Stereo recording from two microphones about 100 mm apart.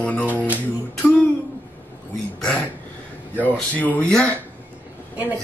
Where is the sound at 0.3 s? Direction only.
15° right (ahead or behind).